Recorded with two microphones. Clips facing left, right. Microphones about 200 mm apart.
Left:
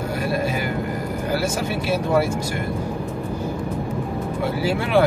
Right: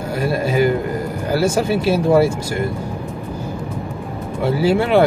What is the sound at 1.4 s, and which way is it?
Speech, 30° right (ahead or behind).